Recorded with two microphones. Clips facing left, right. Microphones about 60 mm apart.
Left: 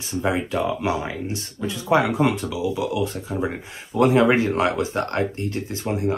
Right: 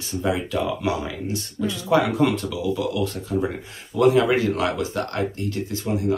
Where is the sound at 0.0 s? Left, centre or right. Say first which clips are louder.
Left 1 dB; left.